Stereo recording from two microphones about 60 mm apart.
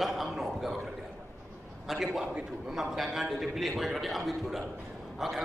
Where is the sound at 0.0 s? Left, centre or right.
Centre.